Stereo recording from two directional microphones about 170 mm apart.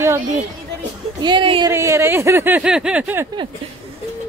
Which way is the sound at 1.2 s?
30° right (ahead or behind).